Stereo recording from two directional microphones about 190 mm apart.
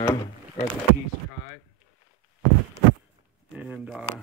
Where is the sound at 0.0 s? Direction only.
15° left (ahead or behind).